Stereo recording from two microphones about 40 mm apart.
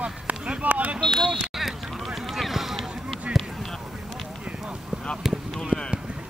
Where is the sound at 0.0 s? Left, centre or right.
Right.